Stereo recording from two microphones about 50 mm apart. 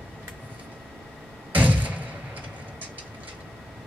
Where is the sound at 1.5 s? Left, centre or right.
Right.